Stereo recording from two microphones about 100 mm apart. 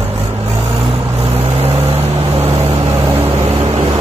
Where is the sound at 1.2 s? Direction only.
85° right.